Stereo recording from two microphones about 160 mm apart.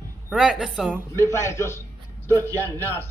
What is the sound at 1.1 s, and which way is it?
A man's voice, 15° left (ahead or behind).